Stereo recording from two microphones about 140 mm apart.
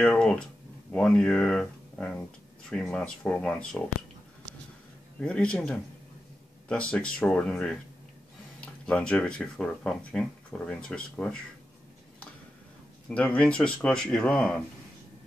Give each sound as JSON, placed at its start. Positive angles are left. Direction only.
{"t": 0.0, "sound": "speech", "side_deg": 5}
{"t": 5.2, "sound": "speech", "side_deg": 5}
{"t": 13.1, "sound": "speech", "side_deg": 10}